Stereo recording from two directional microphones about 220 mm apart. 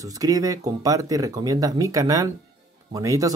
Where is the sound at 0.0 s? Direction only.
15° right (ahead or behind).